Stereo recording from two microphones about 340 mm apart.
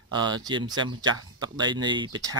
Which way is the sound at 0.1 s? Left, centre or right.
Centre.